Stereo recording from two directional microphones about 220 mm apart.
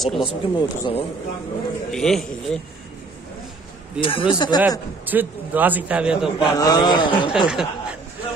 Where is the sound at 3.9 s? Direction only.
25° left (ahead or behind).